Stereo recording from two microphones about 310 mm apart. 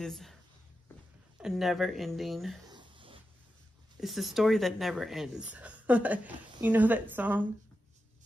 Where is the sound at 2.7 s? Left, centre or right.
Centre.